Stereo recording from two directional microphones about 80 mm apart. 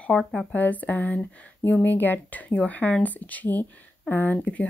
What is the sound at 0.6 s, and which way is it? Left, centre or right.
Speech, centre.